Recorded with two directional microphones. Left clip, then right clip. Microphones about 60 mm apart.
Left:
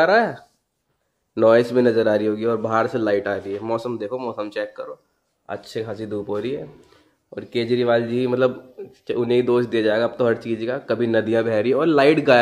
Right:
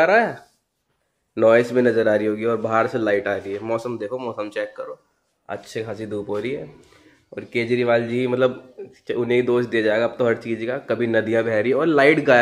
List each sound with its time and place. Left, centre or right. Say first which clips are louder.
0.0 s a man's voice: even; centre
3.3 s a man's voice: even; centre; by 12.4 s left